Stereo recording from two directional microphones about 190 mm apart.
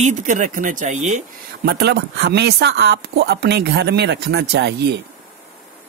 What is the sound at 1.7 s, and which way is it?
Speech, 60° right (ahead or behind).